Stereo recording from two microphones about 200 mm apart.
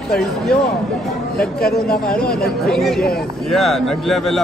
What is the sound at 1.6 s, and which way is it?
Speech, 50° left (ahead or behind).